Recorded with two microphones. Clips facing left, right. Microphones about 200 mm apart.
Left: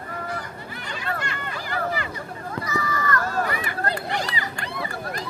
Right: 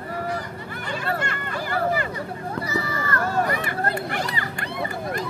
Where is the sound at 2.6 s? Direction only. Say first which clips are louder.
Left 3 dB; 30° right (ahead or behind).